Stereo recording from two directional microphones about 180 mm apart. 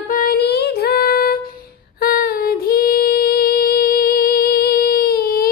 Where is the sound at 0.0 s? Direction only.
55° left (ahead or behind).